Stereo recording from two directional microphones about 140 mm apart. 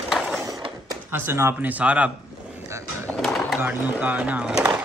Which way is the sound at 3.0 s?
5° left (ahead or behind).